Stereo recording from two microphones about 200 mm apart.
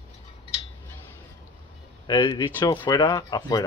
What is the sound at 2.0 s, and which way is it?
Speech, 20° left (ahead or behind).